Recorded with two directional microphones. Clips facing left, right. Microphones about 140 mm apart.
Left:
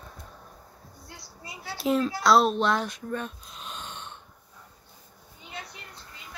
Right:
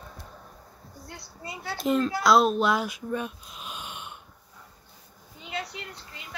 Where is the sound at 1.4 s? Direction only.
55° right (ahead or behind).